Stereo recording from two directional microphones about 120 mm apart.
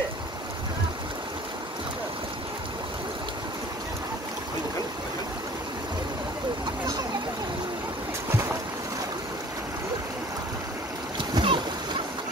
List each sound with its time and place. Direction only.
11.1 s splash: 40° right (ahead or behind)